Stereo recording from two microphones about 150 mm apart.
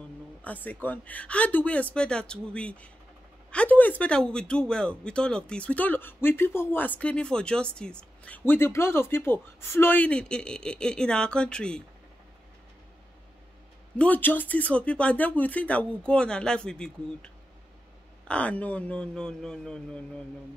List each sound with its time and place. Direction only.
0.4 s a man's voice: 10° left (ahead or behind)
13.9 s a man's voice: 10° left (ahead or behind)